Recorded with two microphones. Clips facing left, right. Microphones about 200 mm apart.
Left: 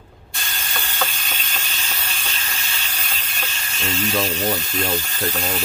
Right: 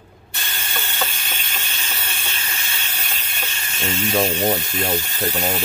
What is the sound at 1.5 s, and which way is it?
Steam, 10° right (ahead or behind).